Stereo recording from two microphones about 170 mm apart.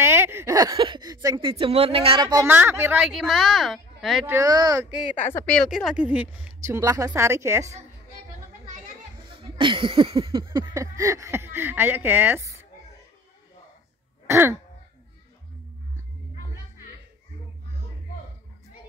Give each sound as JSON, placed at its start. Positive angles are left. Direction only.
{"t": 0.0, "sound": "speech", "side_deg": -15}
{"t": 2.4, "sound": "a woman's voice", "side_deg": -10}
{"t": 4.3, "sound": "a sound", "side_deg": -20}
{"t": 5.3, "sound": "a woman's voice", "side_deg": 5}
{"t": 9.3, "sound": "a sound", "side_deg": -30}
{"t": 14.2, "sound": "throat clearing", "side_deg": -15}